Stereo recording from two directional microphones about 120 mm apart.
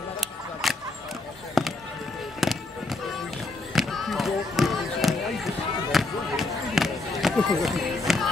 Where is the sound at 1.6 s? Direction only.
Centre (ahead or behind).